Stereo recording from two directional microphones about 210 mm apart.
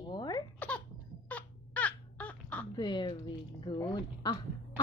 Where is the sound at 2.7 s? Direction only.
20° left (ahead or behind).